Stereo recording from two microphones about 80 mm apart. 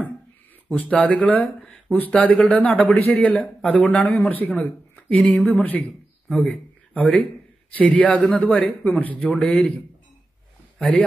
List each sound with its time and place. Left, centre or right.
0.7 s speech: centre
4.3 s speech: centre
5.1 s speech: centre
5.5 s speech: left
10.8 s speech: centre